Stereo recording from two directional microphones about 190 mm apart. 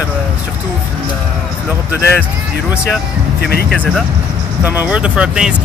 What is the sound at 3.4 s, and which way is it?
Speech, 55° left (ahead or behind).